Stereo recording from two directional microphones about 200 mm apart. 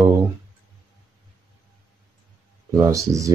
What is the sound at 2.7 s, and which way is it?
Speech, 15° right (ahead or behind).